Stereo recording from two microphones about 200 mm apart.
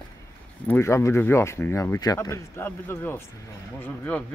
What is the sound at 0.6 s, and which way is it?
Speech, 10° left (ahead or behind).